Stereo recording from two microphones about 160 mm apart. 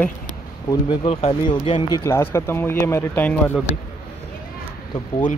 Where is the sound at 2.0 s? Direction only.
15° left (ahead or behind).